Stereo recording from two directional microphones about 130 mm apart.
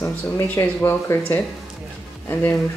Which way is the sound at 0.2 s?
20° left (ahead or behind).